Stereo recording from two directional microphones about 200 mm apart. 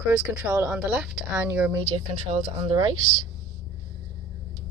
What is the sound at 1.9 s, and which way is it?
Speech, 25° right (ahead or behind).